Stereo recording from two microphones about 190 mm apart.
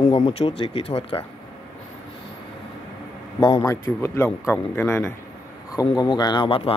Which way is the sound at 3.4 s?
20° left (ahead or behind).